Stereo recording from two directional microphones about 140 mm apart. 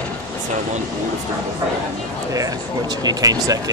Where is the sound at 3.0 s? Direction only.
25° right (ahead or behind).